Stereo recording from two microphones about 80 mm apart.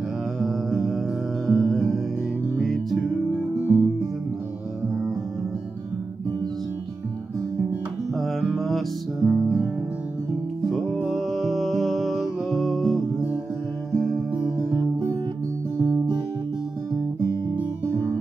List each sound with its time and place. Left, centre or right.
0.4 s music: centre
3.3 s music: centre
8.1 s music: centre
10.7 s music: centre
15.8 s music: right